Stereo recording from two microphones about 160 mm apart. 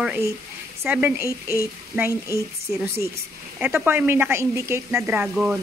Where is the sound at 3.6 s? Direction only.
10° right (ahead or behind).